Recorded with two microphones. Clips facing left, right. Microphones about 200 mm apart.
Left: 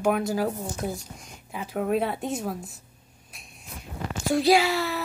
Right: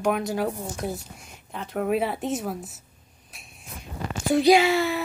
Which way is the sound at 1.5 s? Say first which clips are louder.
Right 1 dB; 5° left (ahead or behind).